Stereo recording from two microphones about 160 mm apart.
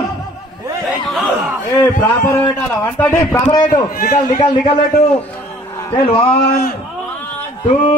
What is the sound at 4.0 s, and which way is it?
Speech, 65° left (ahead or behind).